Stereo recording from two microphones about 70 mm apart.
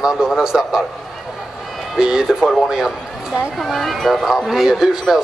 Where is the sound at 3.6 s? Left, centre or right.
Centre.